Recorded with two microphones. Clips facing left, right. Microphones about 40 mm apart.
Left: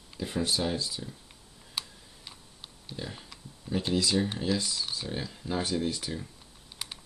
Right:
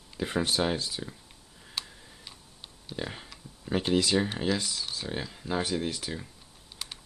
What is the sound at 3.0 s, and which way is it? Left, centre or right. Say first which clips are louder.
Speech: right 4 dB; right.